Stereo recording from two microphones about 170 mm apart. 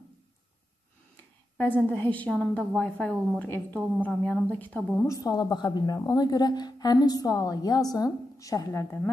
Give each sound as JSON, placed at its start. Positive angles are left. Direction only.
{"t": 1.6, "sound": "a woman's voice", "side_deg": 10}